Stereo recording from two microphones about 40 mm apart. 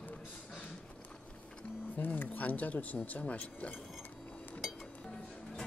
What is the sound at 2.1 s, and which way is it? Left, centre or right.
Speech, left.